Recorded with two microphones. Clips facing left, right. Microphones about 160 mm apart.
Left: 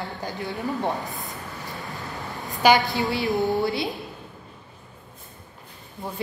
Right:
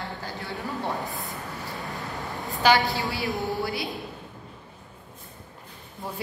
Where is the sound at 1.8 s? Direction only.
Centre (ahead or behind).